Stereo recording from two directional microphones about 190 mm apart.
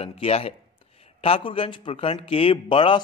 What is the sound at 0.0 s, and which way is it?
A man's voice, 30° left (ahead or behind).